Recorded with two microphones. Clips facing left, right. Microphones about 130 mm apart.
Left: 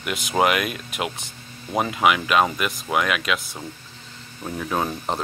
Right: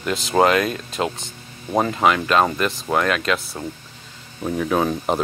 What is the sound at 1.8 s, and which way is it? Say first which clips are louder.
Speech: even; 10° left (ahead or behind).